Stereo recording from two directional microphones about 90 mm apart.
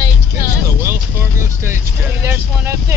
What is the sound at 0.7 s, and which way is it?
Vehicle, 25° right (ahead or behind).